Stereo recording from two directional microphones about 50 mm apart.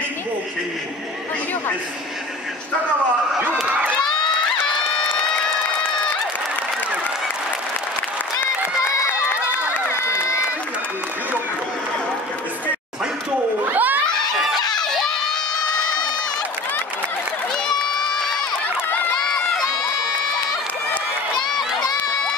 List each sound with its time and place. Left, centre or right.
3.6 s crowd: right
8.8 s run: left
9.8 s crowd: left
13.7 s children shouting: right
14.4 s crowd: centre
21.5 s run: centre